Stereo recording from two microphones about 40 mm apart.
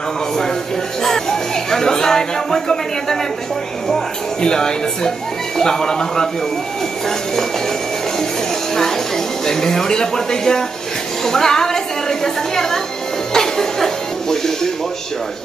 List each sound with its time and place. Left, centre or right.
1.0 s speech: centre
8.7 s a sound: centre
11.2 s music: centre